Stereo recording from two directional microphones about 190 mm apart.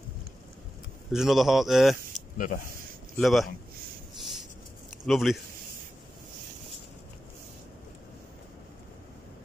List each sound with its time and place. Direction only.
1.1 s speech: centre (ahead or behind)
2.3 s speech: 45° left (ahead or behind)
3.2 s speech: centre (ahead or behind)
4.2 s a sound: centre (ahead or behind)
5.0 s speech: centre (ahead or behind)